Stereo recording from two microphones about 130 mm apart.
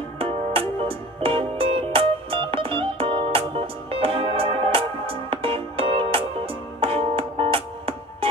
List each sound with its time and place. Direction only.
0.2 s music: 45° right (ahead or behind)